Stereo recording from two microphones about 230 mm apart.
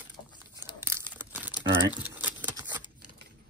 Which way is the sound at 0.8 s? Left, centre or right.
Centre.